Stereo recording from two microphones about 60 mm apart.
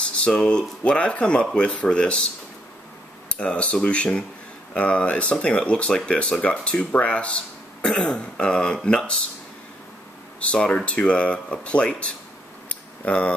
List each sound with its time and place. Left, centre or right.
0.2 s speech: centre
3.3 s speech: centre
10.4 s speech: centre
12.6 s a sound: left